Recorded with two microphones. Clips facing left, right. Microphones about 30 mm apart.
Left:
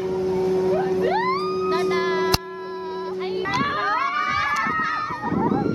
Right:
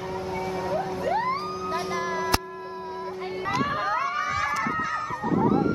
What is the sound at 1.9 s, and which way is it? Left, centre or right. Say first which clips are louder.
Music: left 6 dB; left.